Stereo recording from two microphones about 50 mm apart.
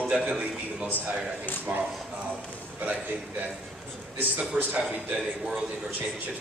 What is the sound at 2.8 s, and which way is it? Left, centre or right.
Speech, right.